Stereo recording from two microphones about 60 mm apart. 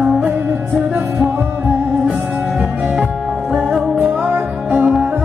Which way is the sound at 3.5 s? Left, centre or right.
Centre.